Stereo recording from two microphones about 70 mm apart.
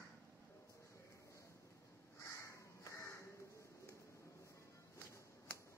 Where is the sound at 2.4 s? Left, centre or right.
Left.